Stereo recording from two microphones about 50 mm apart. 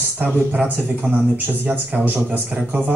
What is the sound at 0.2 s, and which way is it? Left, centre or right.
A man's voice, right.